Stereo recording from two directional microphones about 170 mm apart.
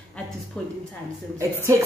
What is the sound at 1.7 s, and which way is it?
Speech, 20° right (ahead or behind).